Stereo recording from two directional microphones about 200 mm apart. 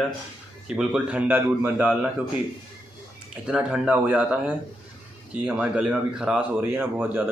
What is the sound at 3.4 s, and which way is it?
A man's voice, 5° right (ahead or behind).